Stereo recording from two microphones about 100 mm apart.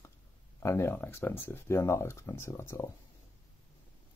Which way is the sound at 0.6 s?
30° left (ahead or behind).